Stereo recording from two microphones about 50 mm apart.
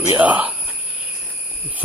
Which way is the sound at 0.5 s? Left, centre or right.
Right.